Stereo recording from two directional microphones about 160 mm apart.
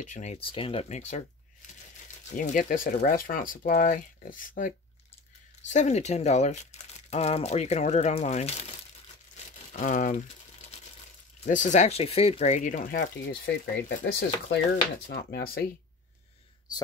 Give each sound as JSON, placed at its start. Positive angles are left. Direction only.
{"t": 0.0, "sound": "speech", "side_deg": 50}
{"t": 2.3, "sound": "speech", "side_deg": 55}
{"t": 5.7, "sound": "speech", "side_deg": 45}
{"t": 9.8, "sound": "speech", "side_deg": 55}
{"t": 11.4, "sound": "speech", "side_deg": 50}
{"t": 13.5, "sound": "speech", "side_deg": 90}